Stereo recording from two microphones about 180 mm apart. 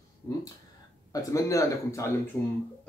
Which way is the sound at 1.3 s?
15° left (ahead or behind).